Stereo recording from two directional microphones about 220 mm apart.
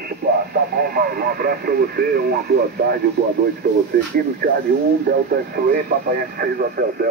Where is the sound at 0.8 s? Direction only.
40° right (ahead or behind).